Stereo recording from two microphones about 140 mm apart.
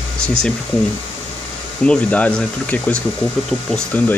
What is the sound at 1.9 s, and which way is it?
Speech, 10° left (ahead or behind).